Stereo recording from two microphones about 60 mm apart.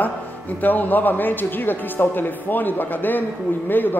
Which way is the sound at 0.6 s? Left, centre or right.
Left.